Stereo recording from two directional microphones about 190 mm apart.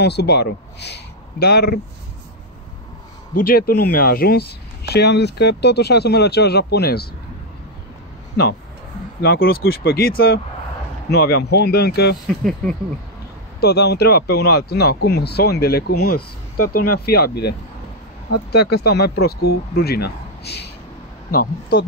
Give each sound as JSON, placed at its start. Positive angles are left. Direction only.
{"t": 0.0, "sound": "speech", "side_deg": 60}
{"t": 3.3, "sound": "speech", "side_deg": 50}
{"t": 9.2, "sound": "speech", "side_deg": 55}
{"t": 12.3, "sound": "speech", "side_deg": 5}
{"t": 13.6, "sound": "speech", "side_deg": 60}
{"t": 20.4, "sound": "a sound", "side_deg": 60}
{"t": 21.3, "sound": "speech", "side_deg": 55}